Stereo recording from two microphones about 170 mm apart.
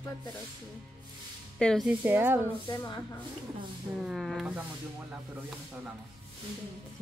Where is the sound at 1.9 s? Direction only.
10° right (ahead or behind).